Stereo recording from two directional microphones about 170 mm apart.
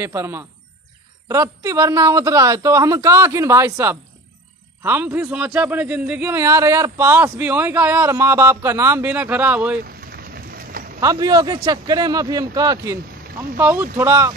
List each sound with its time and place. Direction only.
0.0 s a man's voice: 15° right (ahead or behind)
9.8 s rain on surface: 60° right (ahead or behind)
11.0 s a man's voice: 20° right (ahead or behind)